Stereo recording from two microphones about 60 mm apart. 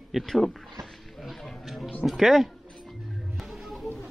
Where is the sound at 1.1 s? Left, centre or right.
Centre.